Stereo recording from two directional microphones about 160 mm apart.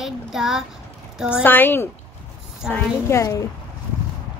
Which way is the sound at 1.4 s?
10° left (ahead or behind).